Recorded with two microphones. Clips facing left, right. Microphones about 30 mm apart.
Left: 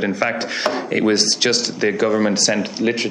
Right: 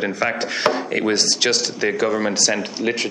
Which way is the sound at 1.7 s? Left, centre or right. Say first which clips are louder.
Left 2 dB; centre.